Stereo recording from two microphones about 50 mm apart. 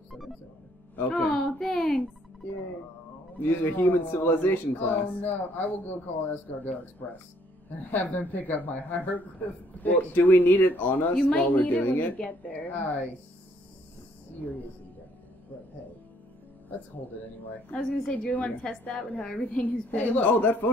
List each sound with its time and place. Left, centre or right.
0.9 s music: left
1.6 s a sound: centre
3.3 s a man's voice: left
7.9 s a man's voice: left
11.1 s speech: left
11.5 s a man's voice: left
16.7 s a man's voice: left
18.6 s a woman's voice: centre
19.3 s a man's voice: left